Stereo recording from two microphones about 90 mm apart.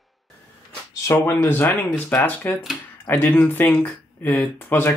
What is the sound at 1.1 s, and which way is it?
Speech, 25° left (ahead or behind).